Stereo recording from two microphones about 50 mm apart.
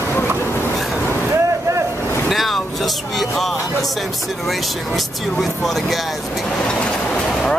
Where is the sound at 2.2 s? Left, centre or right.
Centre.